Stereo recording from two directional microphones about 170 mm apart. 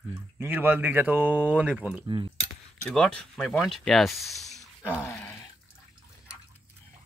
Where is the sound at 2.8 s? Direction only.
5° left (ahead or behind).